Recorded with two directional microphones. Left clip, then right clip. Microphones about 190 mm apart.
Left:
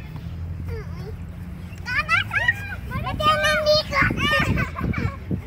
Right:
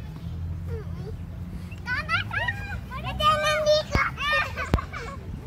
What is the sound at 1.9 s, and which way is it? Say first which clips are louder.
Vehicle: left 6 dB; 30° left (ahead or behind).